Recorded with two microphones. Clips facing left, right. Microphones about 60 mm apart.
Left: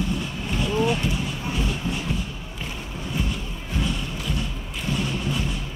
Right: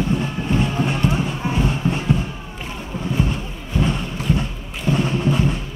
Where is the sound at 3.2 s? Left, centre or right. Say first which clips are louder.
Right 6 dB; right.